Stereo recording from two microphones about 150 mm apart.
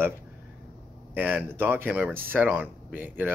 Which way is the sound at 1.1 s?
10° right (ahead or behind).